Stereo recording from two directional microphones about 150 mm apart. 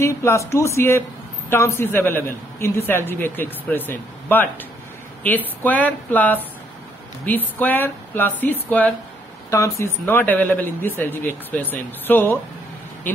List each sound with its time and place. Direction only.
0.0 s speech: 20° left (ahead or behind)